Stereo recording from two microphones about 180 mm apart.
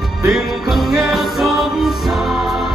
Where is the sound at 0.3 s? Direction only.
Centre (ahead or behind).